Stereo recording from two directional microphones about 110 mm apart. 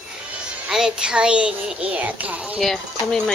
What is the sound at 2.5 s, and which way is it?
Speech, centre (ahead or behind).